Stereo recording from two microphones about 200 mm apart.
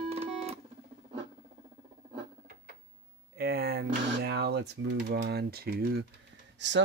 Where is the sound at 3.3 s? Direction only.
50° right (ahead or behind).